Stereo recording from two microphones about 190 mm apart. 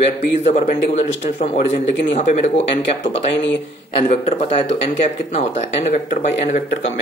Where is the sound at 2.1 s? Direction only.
35° left (ahead or behind).